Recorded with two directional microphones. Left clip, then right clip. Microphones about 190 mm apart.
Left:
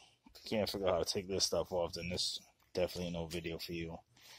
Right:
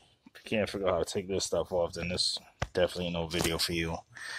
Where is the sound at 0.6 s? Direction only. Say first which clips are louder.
Right 5 dB; 10° left (ahead or behind).